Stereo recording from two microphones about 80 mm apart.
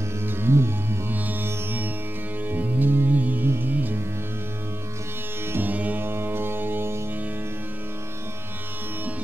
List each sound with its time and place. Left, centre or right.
0.2 s music: right
5.5 s music: right